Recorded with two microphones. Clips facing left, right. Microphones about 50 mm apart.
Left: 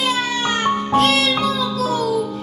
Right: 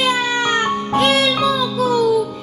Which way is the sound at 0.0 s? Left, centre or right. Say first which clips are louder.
Right 3 dB; right.